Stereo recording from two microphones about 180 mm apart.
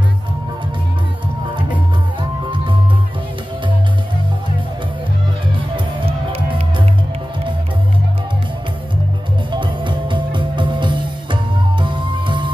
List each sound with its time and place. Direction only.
2.5 s music: 25° right (ahead or behind)
5.9 s music: 30° right (ahead or behind)
9.5 s music: 25° right (ahead or behind)